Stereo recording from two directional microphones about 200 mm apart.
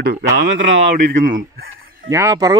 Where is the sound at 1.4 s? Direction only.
45° right (ahead or behind).